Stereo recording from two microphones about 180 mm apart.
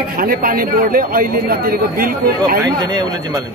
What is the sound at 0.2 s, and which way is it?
Speech, 55° right (ahead or behind).